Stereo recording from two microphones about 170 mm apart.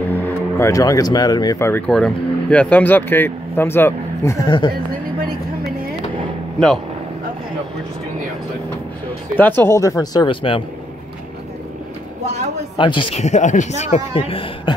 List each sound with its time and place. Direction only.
0.1 s speech: 15° left (ahead or behind)
1.9 s speech: centre (ahead or behind); by 4.7 s 25° left (ahead or behind)
9.4 s speech: 10° left (ahead or behind); by 10.6 s 30° left (ahead or behind)
12.7 s speech: 30° left (ahead or behind)